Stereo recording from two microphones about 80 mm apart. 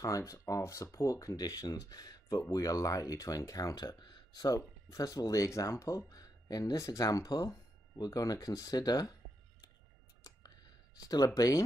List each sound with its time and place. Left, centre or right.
0.0 s speech: left
3.7 s speech: left
4.6 s speech: left
11.2 s speech: left